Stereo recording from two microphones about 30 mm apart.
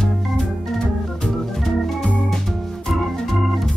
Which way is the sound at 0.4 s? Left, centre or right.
Left.